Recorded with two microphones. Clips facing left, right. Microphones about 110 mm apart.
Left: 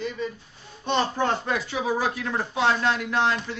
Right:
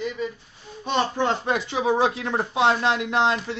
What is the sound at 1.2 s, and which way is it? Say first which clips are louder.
Speech: right 2 dB; 20° right (ahead or behind).